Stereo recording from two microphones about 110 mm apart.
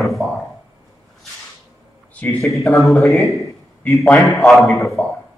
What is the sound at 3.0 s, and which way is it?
Speech, 25° left (ahead or behind).